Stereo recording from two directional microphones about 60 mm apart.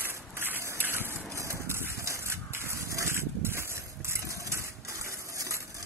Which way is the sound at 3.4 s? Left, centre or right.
Right.